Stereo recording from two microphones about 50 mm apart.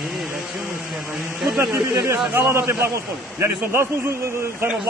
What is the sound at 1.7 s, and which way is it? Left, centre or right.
A man's voice, right.